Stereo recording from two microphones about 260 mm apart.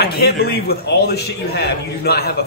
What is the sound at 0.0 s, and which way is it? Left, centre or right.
A man's voice, left.